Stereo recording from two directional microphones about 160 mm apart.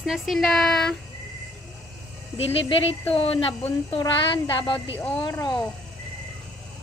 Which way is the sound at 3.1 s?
35° left (ahead or behind).